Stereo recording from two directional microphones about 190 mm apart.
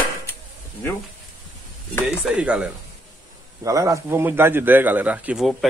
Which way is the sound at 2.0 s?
5° right (ahead or behind).